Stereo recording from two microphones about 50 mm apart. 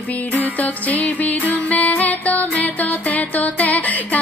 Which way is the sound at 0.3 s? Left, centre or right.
Left.